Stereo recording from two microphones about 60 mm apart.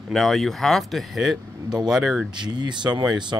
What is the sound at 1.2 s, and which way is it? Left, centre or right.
Speech, centre.